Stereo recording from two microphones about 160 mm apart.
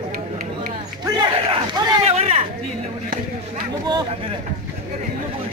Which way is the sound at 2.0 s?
40° right (ahead or behind).